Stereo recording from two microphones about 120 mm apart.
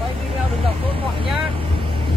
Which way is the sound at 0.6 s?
50° right (ahead or behind).